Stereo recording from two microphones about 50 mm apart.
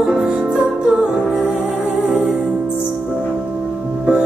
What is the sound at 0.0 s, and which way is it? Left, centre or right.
Music, centre.